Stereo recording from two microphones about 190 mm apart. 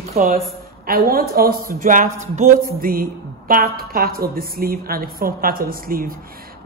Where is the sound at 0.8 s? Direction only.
50° right (ahead or behind).